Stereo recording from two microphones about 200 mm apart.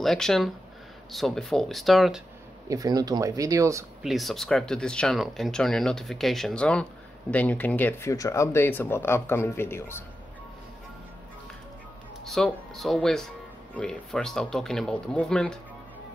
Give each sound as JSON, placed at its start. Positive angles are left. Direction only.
{"t": 0.0, "sound": "speech", "side_deg": 0}
{"t": 2.7, "sound": "speech", "side_deg": -15}
{"t": 4.0, "sound": "speech", "side_deg": 0}
{"t": 12.3, "sound": "speech", "side_deg": 0}